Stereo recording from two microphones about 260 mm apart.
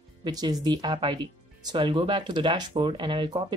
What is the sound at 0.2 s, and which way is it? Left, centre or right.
Speech, centre.